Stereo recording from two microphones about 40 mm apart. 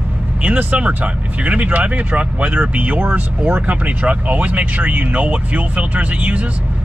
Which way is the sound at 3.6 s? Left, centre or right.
Right.